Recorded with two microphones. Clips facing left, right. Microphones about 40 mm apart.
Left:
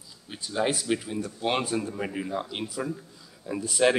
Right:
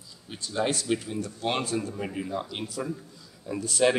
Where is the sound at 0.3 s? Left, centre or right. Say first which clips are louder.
Left 1 dB; centre.